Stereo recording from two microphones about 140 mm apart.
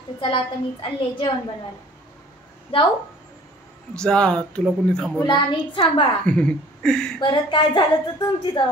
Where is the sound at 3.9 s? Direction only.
5° left (ahead or behind).